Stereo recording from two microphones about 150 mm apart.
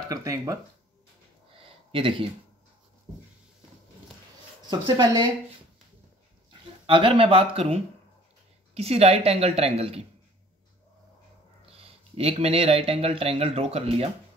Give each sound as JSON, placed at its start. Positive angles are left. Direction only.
{"t": 0.1, "sound": "speech", "side_deg": -20}
{"t": 1.6, "sound": "a sound", "side_deg": -35}
{"t": 4.6, "sound": "speech", "side_deg": -30}
{"t": 6.9, "sound": "a woman's voice", "side_deg": -35}
{"t": 11.7, "sound": "speech", "side_deg": -40}